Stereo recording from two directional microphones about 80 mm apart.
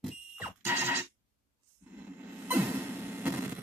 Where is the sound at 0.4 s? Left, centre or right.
Right.